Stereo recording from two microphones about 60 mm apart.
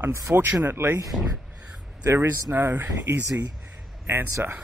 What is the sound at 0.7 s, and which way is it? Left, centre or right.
Speech, right.